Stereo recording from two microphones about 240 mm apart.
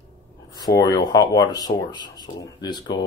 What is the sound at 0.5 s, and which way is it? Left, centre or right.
Speech, centre.